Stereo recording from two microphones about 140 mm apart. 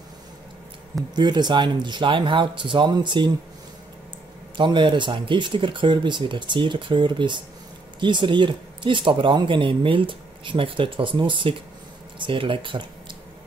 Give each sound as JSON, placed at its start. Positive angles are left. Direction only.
{"t": 1.1, "sound": "speech", "side_deg": -30}
{"t": 4.6, "sound": "speech", "side_deg": -35}